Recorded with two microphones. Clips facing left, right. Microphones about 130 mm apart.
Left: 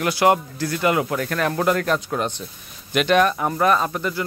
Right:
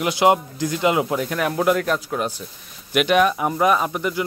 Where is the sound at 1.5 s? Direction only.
5° right (ahead or behind).